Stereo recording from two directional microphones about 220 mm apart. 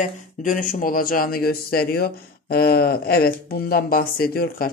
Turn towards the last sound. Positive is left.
turn(degrees=40)  # may be behind; listen again after turning